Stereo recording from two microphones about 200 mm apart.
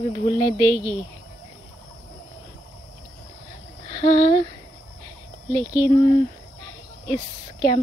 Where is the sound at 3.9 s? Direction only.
25° left (ahead or behind).